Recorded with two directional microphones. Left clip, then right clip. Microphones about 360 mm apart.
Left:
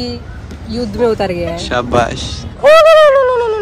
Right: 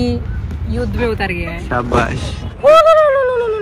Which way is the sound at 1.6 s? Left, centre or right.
Centre.